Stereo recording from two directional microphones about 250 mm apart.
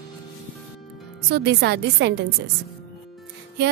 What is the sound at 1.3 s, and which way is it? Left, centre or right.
Speech, right.